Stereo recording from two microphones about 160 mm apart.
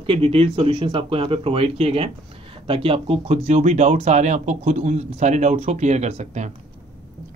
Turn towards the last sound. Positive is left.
turn(degrees=-45)  # may be behind; listen again after turning